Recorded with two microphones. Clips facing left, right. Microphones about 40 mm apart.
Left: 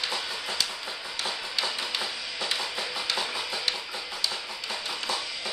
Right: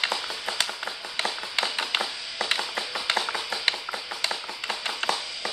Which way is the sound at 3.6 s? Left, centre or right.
Right.